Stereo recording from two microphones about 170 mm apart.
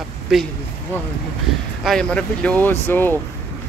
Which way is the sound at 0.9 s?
10° left (ahead or behind).